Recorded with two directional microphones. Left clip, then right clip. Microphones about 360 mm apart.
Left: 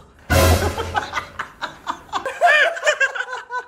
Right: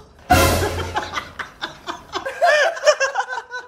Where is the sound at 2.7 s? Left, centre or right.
Centre.